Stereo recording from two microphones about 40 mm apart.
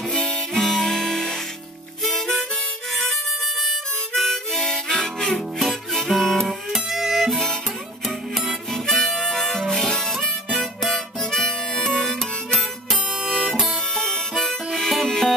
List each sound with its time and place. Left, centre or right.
0.1 s harmonica: centre
0.6 s harmonica: centre
5.9 s music: centre
8.7 s harmonica: centre
13.4 s harmonica: centre